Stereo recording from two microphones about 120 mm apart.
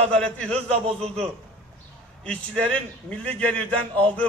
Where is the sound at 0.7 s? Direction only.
55° right (ahead or behind).